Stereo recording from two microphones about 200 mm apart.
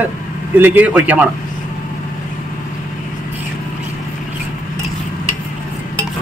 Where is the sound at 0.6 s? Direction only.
5° right (ahead or behind).